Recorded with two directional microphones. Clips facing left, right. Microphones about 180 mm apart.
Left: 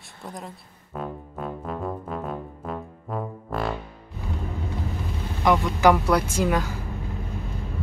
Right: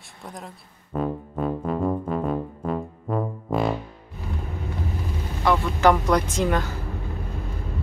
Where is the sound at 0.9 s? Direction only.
Centre (ahead or behind).